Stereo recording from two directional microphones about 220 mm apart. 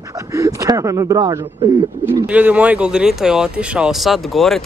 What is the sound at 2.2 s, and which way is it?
Speech, 5° right (ahead or behind).